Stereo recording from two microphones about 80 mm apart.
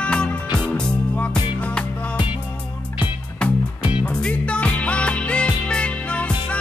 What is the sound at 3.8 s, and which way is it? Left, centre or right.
Music, centre.